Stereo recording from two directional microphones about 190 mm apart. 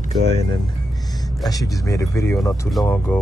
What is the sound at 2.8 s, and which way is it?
Speech, centre (ahead or behind).